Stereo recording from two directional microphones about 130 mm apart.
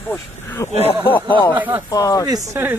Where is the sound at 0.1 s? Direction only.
15° left (ahead or behind).